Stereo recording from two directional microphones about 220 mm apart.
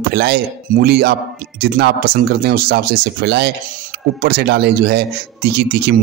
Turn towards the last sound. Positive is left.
turn(degrees=-45)  # may be behind; listen again after turning